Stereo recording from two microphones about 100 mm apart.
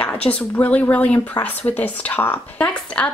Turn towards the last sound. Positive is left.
turn(degrees=10)  # may be behind; listen again after turning